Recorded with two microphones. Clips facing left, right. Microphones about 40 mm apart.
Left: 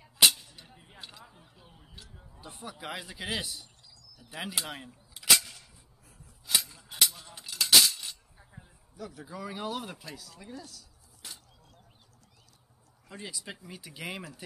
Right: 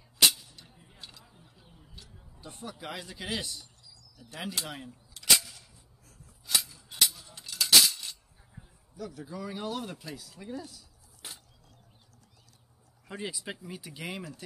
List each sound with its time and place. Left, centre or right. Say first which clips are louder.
0.2 s a sound: left 1 dB; centre
2.4 s a man's voice: even; centre
6.4 s a sound: left 1 dB; centre
8.9 s speech: right 2 dB; centre
13.1 s speech: right 4 dB; centre
13.6 s speech: right 2 dB; centre